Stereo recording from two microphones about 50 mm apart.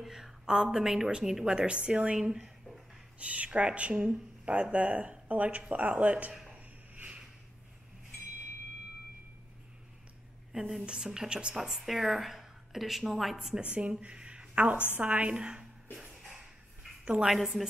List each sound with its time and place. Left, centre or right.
0.0 s a woman's voice: centre
2.4 s a sound: centre
3.2 s speech: right
6.3 s a sound: centre
10.5 s a woman's voice: centre
13.6 s a woman's voice: right
16.1 s a sound: centre
17.0 s a woman's voice: centre
17.3 s speech: centre